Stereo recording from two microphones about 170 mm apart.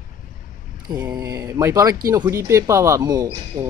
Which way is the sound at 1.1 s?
20° right (ahead or behind).